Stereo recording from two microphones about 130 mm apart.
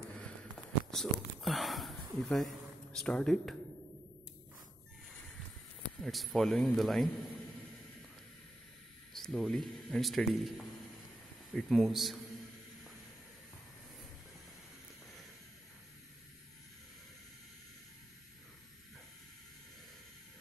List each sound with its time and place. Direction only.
0.9 s speech: centre (ahead or behind)
5.9 s speech: centre (ahead or behind)
9.1 s speech: centre (ahead or behind)
11.5 s speech: centre (ahead or behind)